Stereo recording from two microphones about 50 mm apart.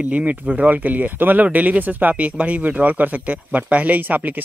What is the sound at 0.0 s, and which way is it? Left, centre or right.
Speech, right.